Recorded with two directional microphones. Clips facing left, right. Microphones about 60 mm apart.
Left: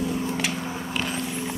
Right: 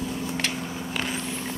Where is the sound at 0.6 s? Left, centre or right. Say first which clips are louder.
Left 2 dB; left.